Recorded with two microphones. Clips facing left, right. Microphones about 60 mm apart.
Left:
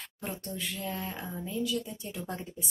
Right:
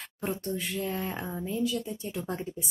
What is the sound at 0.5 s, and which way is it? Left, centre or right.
Speech, right.